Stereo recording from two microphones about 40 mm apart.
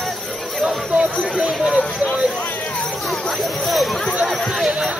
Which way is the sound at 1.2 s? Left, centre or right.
Centre.